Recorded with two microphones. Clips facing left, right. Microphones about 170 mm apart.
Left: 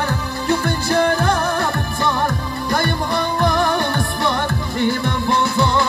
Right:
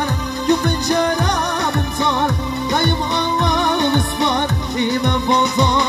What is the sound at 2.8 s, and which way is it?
Music, 20° right (ahead or behind).